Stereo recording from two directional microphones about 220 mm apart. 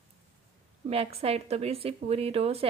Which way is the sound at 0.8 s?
25° right (ahead or behind).